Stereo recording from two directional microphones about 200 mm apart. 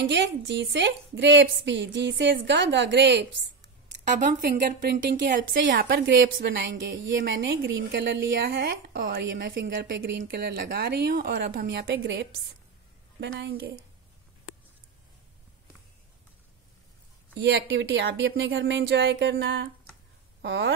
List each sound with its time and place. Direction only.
0.0 s a woman's voice: 60° right (ahead or behind)
4.2 s a woman's voice: 45° right (ahead or behind)
5.9 s a woman's voice: 65° right (ahead or behind)
9.5 s a woman's voice: 45° right (ahead or behind); by 10.2 s 60° right (ahead or behind)
10.2 s a woman's voice: 50° right (ahead or behind)
13.4 s a woman's voice: 55° right (ahead or behind)
17.4 s a woman's voice: 60° right (ahead or behind)